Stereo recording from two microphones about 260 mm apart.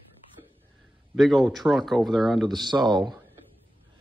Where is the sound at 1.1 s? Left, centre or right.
Centre.